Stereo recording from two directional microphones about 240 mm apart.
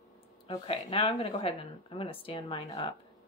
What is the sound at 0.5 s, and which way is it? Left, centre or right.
Speech, left.